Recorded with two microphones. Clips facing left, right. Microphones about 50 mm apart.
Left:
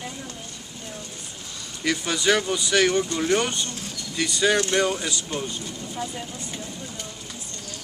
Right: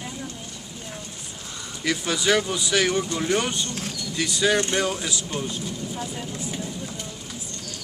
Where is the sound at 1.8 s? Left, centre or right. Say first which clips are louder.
Even; centre.